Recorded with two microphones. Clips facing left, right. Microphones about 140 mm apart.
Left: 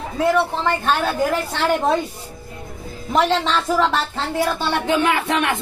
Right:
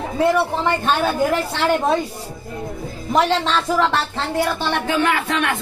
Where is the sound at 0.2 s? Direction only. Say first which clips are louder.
Right 1 dB; 5° right (ahead or behind).